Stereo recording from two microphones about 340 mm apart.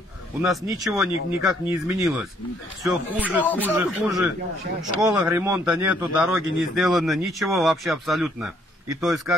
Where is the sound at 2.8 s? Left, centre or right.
Centre.